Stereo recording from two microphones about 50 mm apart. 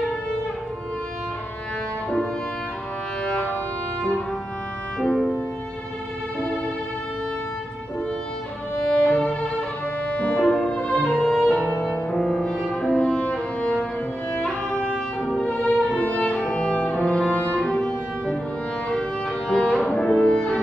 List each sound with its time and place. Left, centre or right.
8.9 s violin: left
10.5 s music: centre
11.5 s brass instrument: centre
12.9 s music: centre
19.5 s music: centre